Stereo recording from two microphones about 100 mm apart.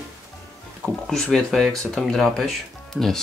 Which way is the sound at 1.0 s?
5° left (ahead or behind).